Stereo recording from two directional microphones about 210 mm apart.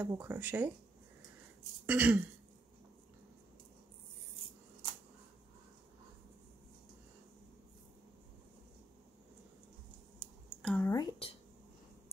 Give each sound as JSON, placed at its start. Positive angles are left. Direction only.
{"t": 0.0, "sound": "speech", "side_deg": -10}
{"t": 1.9, "sound": "speech", "side_deg": -5}
{"t": 10.6, "sound": "a sound", "side_deg": 0}
{"t": 10.9, "sound": "speech", "side_deg": 20}